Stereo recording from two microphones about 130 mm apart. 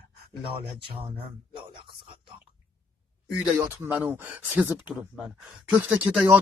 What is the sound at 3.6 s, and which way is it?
Speech, 15° right (ahead or behind).